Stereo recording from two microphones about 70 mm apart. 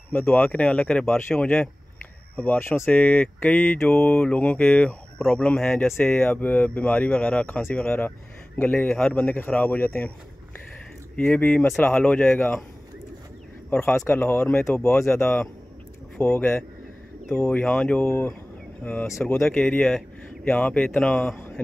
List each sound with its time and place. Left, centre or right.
0.1 s mantra: left
11.1 s speech: centre
11.8 s mantra: centre
13.7 s speech: left
14.0 s mantra: left
18.0 s speech: left
19.3 s speech: centre